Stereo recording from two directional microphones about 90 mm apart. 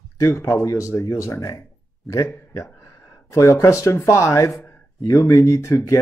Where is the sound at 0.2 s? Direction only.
35° left (ahead or behind).